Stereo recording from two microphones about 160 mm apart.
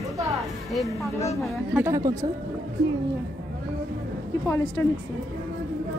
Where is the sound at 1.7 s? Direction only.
15° right (ahead or behind).